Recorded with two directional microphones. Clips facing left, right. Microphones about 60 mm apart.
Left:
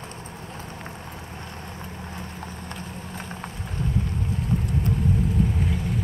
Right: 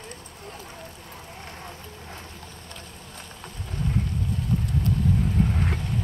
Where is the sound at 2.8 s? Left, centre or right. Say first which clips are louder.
Left 7 dB; left.